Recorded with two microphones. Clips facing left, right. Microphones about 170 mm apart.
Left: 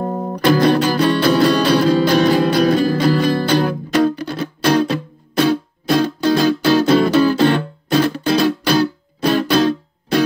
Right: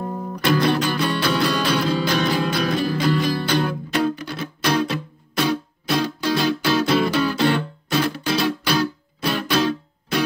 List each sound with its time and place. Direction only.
0.0 s music: 40° left (ahead or behind)
5.4 s music: 45° left (ahead or behind)